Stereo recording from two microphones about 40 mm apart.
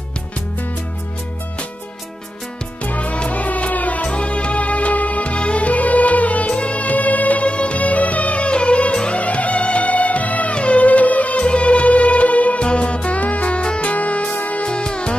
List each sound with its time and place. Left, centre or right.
2.8 s music: left
14.7 s music: left